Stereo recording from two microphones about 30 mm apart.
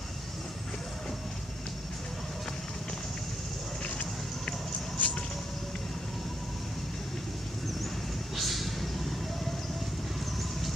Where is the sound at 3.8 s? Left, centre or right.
Left.